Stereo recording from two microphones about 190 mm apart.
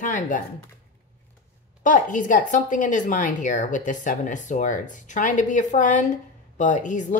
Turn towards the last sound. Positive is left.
turn(degrees=40)  # may be behind; listen again after turning